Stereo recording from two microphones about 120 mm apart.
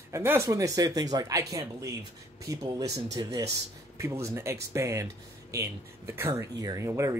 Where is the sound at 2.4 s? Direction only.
30° right (ahead or behind).